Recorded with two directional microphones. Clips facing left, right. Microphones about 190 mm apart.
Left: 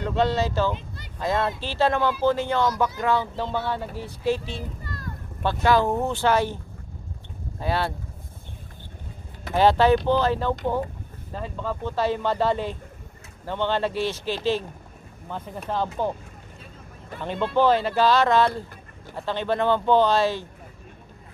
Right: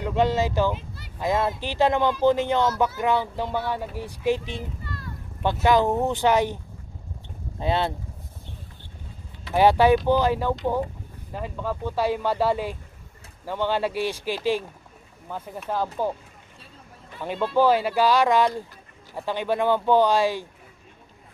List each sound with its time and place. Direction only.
0.0 s speech: 10° right (ahead or behind)
0.7 s a sound: 5° right (ahead or behind)
1.2 s speech: 15° right (ahead or behind)
4.8 s vehicle: 45° left (ahead or behind)
5.4 s speech: 15° right (ahead or behind)
9.5 s speech: 10° right (ahead or behind)
17.2 s speech: 10° right (ahead or behind)